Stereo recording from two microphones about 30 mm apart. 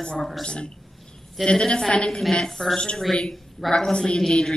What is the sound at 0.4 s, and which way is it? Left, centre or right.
A woman's voice, left.